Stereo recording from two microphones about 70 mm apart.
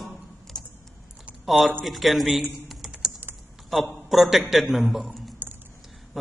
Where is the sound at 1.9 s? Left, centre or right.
Centre.